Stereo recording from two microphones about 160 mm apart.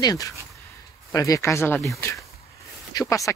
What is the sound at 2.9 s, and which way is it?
Speech, 20° left (ahead or behind).